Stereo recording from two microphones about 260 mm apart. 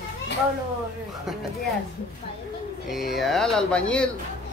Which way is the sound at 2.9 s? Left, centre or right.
Centre.